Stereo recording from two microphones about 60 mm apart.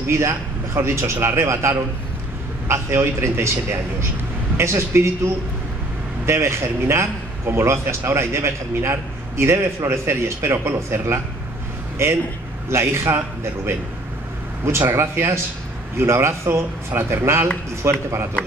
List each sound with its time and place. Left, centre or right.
0.0 s a man's voice: right
12.7 s a man's voice: right